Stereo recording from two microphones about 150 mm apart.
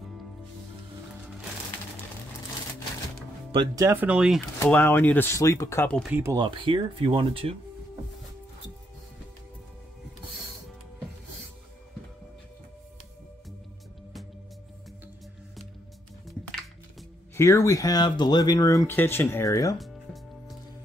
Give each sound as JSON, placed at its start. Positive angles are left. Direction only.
{"t": 3.5, "sound": "speech", "side_deg": -20}
{"t": 4.6, "sound": "speech", "side_deg": 10}
{"t": 6.0, "sound": "speech", "side_deg": -10}
{"t": 6.3, "sound": "speech", "side_deg": -30}
{"t": 17.4, "sound": "speech", "side_deg": 20}
{"t": 19.8, "sound": "music", "side_deg": 0}